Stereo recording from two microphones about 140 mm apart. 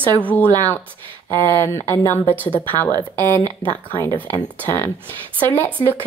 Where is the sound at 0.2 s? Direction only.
10° left (ahead or behind).